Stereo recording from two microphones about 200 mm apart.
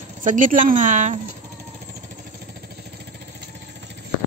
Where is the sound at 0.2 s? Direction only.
40° right (ahead or behind).